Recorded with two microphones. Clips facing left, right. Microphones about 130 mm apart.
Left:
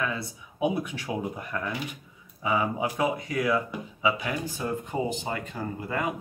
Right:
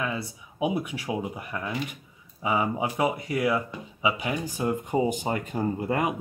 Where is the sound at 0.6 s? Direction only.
10° right (ahead or behind).